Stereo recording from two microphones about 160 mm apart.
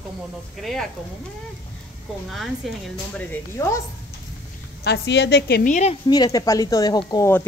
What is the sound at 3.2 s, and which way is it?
Speech, 15° left (ahead or behind).